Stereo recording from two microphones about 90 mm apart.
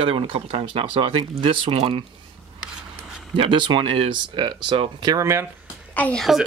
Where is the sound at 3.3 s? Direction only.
65° right (ahead or behind).